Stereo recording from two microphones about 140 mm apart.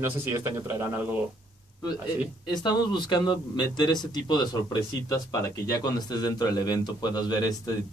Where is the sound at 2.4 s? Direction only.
30° left (ahead or behind).